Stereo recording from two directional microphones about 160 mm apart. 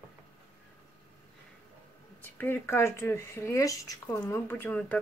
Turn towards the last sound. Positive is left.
turn(degrees=10)  # may be behind; listen again after turning